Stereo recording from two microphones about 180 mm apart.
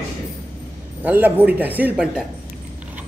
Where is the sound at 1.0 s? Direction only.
10° right (ahead or behind).